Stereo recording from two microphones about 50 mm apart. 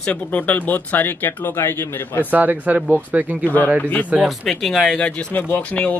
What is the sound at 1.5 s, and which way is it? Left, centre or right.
Speech, left.